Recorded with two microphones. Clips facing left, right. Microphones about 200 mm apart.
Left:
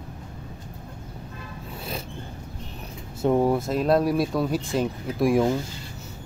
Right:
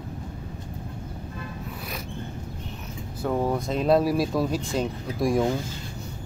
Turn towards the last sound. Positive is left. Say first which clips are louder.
# left 2 dB
turn(degrees=0)  # may be behind; listen again after turning